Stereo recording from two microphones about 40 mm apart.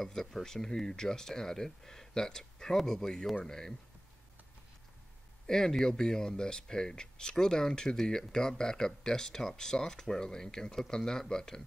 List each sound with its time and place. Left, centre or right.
0.0 s speech: centre
5.5 s speech: centre